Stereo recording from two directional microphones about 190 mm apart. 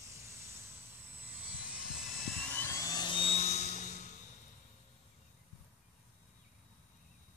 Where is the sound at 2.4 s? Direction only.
10° left (ahead or behind); by 4.0 s 40° left (ahead or behind).